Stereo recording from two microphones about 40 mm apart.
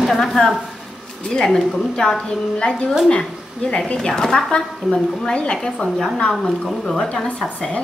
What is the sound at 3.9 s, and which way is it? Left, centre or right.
A woman's voice, centre.